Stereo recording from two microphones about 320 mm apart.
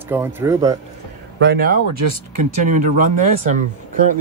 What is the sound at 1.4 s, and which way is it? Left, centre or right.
Speech, right.